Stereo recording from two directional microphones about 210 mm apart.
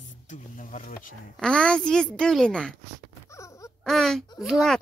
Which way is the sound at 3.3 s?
15° left (ahead or behind).